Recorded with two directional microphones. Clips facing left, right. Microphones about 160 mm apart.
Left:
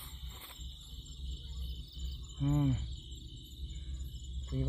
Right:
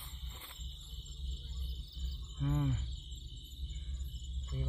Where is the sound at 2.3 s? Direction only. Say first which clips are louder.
Left 4 dB; 25° left (ahead or behind).